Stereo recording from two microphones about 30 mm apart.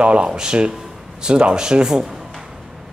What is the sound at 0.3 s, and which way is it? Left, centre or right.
Speech, right.